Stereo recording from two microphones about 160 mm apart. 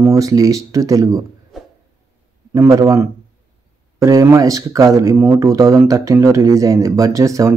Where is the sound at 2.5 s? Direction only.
20° right (ahead or behind).